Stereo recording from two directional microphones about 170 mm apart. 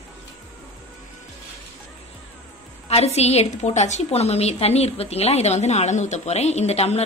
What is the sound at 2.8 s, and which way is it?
A woman's voice, 40° left (ahead or behind).